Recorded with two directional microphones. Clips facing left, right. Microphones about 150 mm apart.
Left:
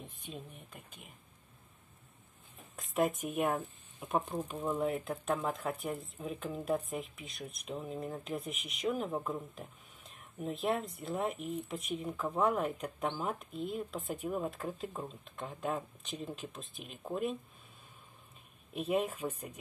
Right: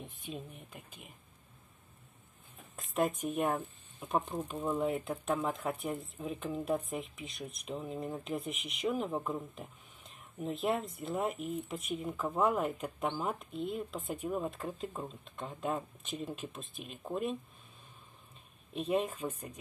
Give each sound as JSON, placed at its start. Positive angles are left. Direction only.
{"t": 2.7, "sound": "speech", "side_deg": 0}
{"t": 4.6, "sound": "speech", "side_deg": -5}
{"t": 18.7, "sound": "speech", "side_deg": 5}